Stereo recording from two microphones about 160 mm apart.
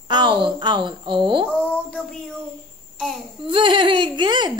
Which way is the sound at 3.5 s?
30° right (ahead or behind).